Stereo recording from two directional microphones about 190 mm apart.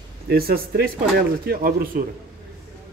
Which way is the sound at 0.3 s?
55° right (ahead or behind).